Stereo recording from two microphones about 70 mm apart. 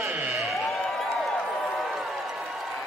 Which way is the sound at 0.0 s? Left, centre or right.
Right.